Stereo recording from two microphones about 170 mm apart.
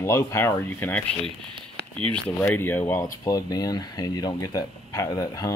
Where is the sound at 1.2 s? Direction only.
30° right (ahead or behind).